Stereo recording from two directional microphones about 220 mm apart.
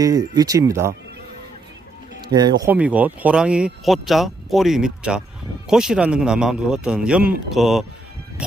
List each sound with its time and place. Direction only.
0.0 s speech: 15° right (ahead or behind)
2.2 s speech: 20° right (ahead or behind)
2.6 s speech: 5° right (ahead or behind)